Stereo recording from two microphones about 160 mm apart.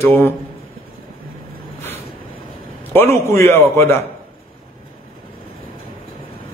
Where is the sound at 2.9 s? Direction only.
15° left (ahead or behind).